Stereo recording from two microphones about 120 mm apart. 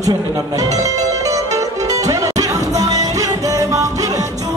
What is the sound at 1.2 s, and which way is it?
Music, 30° right (ahead or behind).